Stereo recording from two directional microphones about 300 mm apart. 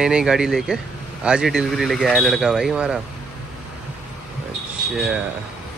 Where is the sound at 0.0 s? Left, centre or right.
Centre.